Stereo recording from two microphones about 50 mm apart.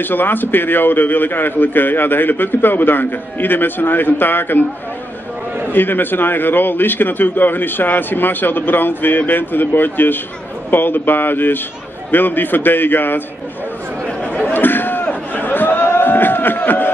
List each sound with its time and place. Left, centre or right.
0.0 s a man's voice: left
5.7 s a man's voice: left
14.5 s a sound: left